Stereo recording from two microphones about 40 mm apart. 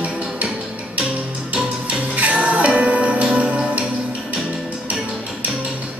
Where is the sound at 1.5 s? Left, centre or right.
Right.